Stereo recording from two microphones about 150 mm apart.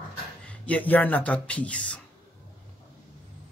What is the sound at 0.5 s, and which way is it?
Speech, 10° left (ahead or behind).